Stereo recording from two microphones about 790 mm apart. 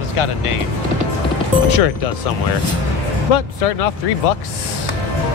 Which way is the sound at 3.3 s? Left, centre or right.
Left.